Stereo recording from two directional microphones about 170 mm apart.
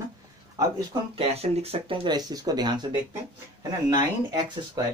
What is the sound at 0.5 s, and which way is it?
Speech, 20° right (ahead or behind).